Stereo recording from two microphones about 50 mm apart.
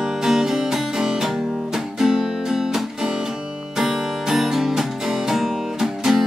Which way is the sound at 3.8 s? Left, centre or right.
Centre.